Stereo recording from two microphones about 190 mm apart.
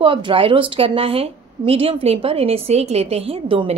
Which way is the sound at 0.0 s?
25° right (ahead or behind).